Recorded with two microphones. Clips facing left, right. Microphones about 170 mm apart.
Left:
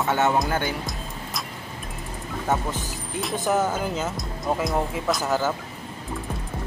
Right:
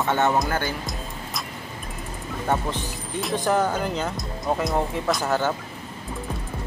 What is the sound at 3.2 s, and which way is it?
Speech, 5° left (ahead or behind).